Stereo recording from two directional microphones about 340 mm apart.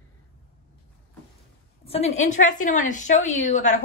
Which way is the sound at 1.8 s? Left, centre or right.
Centre.